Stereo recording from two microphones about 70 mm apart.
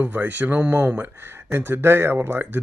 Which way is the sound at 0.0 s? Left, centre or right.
Right.